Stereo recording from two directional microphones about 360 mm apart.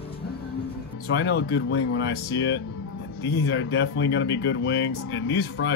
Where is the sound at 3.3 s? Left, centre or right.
Left.